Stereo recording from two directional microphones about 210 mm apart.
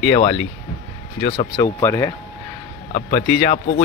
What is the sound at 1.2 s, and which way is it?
Speech, 20° left (ahead or behind).